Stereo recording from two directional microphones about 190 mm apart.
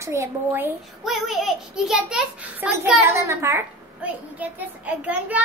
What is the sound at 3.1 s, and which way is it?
A child's voice, 15° right (ahead or behind).